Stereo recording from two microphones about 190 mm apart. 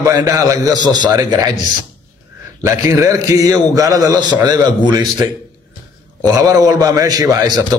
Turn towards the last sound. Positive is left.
turn(degrees=-20)  # may be behind; listen again after turning